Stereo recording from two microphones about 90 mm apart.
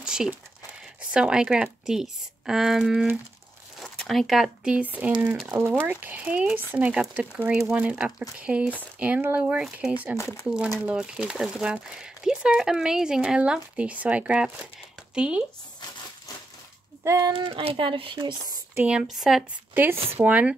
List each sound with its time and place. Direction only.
0.0 s a sound: 5° right (ahead or behind)
1.1 s speech: 10° right (ahead or behind)
4.7 s speech: 15° right (ahead or behind)
10.1 s speech: 30° left (ahead or behind)
10.4 s speech: 10° right (ahead or behind)
17.0 s a sound: 35° right (ahead or behind)
17.3 s speech: 85° right; by 18.5 s 55° right (ahead or behind)
18.8 s speech: 10° right (ahead or behind)
19.7 s speech: 20° right (ahead or behind)